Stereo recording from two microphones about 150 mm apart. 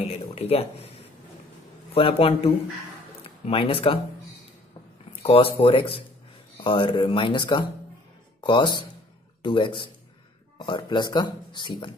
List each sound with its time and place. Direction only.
0.0 s a sound: 40° left (ahead or behind)
2.0 s speech: 40° left (ahead or behind)
5.2 s speech: 40° left (ahead or behind)